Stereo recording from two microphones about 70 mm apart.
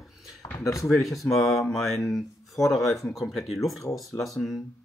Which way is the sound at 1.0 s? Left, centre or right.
Centre.